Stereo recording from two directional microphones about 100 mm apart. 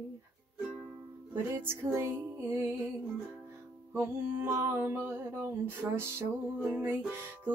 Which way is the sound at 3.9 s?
25° right (ahead or behind).